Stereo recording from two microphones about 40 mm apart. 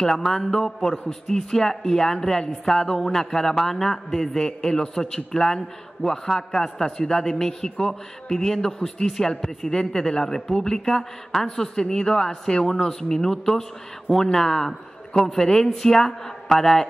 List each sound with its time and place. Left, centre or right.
0.0 s a man's voice: centre
0.9 s a man's voice: left